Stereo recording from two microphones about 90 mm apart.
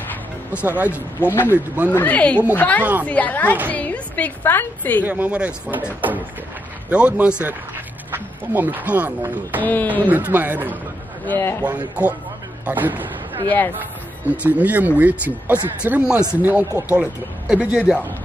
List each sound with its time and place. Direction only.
0.7 s speech: 15° right (ahead or behind)
1.2 s speech: 25° left (ahead or behind)
2.8 s speech: 20° right (ahead or behind)
3.1 s a woman's voice: 20° left (ahead or behind)
5.0 s speech: 15° right (ahead or behind)
9.6 s speech: 20° left (ahead or behind)
10.0 s speech: 20° right (ahead or behind)
11.2 s speech: 25° left (ahead or behind)
11.6 s speech: 15° right (ahead or behind)